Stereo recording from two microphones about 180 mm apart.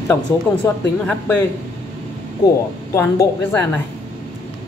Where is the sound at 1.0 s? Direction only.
10° left (ahead or behind).